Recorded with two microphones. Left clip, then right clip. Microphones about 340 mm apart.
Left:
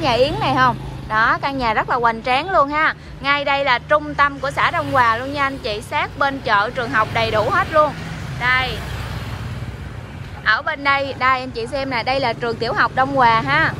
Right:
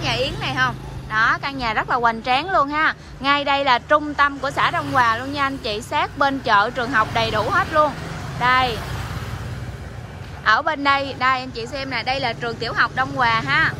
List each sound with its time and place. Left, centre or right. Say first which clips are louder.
0.0 s a woman's voice: left 6 dB; centre
10.5 s a woman's voice: even; centre